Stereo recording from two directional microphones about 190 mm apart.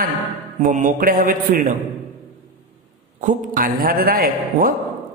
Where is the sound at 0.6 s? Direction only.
45° right (ahead or behind).